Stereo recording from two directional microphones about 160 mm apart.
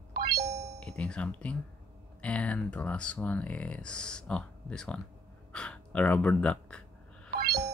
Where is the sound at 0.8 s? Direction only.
5° left (ahead or behind).